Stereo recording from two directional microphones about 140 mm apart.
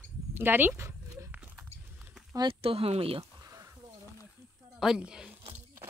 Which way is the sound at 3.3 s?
25° right (ahead or behind).